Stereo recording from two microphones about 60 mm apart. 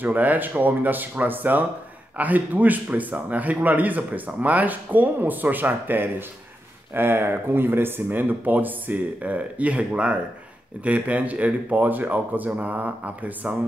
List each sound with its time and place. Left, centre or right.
0.0 s speech: right